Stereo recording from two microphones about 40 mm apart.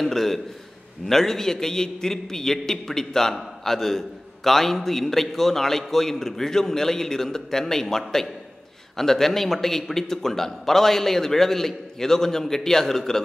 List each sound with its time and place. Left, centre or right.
0.0 s a man's voice: centre